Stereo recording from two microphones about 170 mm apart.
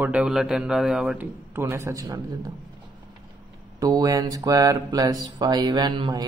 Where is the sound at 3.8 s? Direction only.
20° right (ahead or behind).